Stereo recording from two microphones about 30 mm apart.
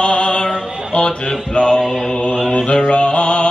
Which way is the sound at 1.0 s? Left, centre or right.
Left.